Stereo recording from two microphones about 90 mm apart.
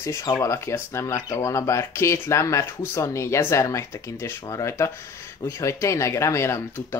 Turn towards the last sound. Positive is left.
turn(degrees=30)  # may be behind; listen again after turning